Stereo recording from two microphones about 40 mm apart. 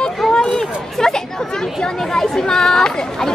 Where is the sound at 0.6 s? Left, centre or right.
Centre.